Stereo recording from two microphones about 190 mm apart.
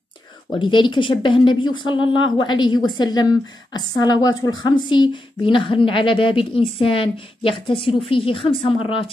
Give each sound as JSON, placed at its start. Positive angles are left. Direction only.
{"t": 0.5, "sound": "a woman's voice", "side_deg": 25}